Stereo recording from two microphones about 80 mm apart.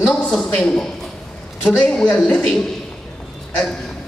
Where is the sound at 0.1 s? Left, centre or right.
Centre.